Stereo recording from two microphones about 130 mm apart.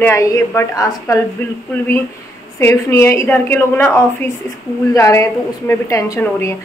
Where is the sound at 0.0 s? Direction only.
20° left (ahead or behind).